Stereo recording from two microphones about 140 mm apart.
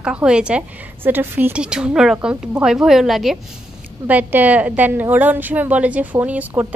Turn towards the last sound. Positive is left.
turn(degrees=-10)  # may be behind; listen again after turning